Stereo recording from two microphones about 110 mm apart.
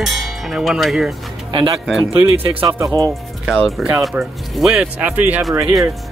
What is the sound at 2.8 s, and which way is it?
Speech, 35° right (ahead or behind).